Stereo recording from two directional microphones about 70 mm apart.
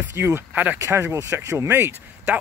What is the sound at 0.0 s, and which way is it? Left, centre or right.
Speech, right.